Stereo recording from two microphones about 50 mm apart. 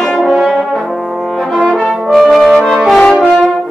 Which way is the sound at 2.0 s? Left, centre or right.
Centre.